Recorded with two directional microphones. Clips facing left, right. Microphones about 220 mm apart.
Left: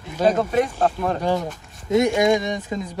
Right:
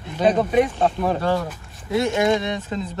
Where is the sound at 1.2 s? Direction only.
15° left (ahead or behind).